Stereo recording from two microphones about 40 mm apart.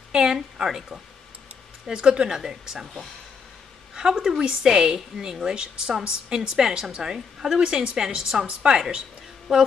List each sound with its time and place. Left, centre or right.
0.1 s a sound: centre
0.7 s a woman's voice: centre
1.9 s a woman's voice: right
3.9 s a woman's voice: centre